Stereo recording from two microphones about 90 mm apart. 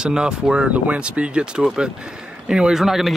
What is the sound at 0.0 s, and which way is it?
Speech, 10° right (ahead or behind).